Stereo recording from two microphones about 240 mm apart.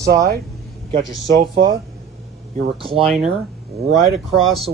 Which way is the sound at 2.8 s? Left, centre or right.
Right.